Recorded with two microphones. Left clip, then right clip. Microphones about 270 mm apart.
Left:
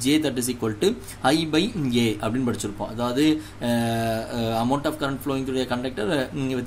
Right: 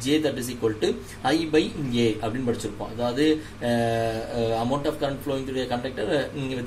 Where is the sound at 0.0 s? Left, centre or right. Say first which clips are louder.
Left 1 dB; left.